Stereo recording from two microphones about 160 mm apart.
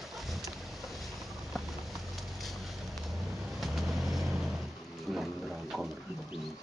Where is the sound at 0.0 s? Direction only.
Centre (ahead or behind).